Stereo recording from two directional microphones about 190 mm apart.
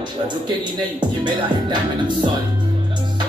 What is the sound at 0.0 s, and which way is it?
Speech, 25° right (ahead or behind).